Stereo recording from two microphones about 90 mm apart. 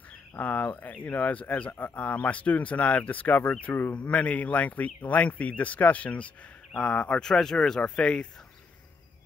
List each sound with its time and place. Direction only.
0.3 s speech: 15° left (ahead or behind)